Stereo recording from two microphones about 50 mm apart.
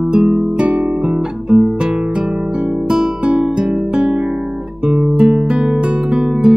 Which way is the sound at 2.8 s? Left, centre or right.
Centre.